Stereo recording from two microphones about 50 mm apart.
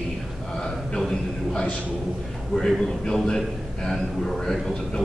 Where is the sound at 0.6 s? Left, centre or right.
Centre.